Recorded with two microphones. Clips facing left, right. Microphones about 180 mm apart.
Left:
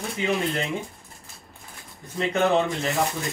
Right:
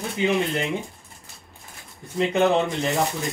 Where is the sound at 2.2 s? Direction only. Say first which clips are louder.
Right 2 dB; centre (ahead or behind).